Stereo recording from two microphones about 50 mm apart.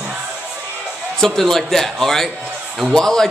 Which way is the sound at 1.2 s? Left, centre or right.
Centre.